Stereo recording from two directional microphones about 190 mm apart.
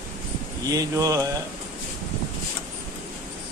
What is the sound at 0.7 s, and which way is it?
Speech, 20° right (ahead or behind).